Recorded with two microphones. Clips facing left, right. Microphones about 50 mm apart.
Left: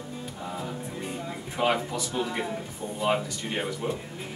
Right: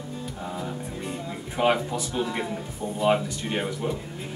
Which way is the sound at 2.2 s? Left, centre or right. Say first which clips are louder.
Right 1 dB; centre.